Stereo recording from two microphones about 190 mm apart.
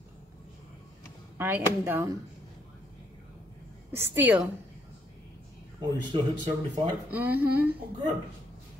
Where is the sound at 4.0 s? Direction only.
10° right (ahead or behind).